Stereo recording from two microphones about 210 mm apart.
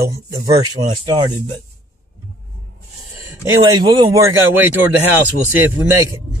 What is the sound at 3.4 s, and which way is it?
A man's voice, 15° right (ahead or behind).